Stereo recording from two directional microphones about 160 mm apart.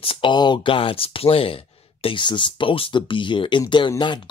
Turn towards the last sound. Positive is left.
turn(degrees=30)  # may be behind; listen again after turning